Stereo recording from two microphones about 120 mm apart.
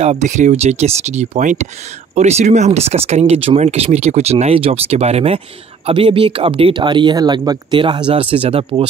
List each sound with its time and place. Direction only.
0.0 s speech: 70° right (ahead or behind)
2.1 s speech: 70° right (ahead or behind); by 8.8 s 50° right (ahead or behind)